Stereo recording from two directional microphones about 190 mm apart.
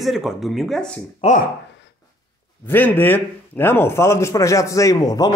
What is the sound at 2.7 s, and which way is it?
A man's voice, 10° left (ahead or behind).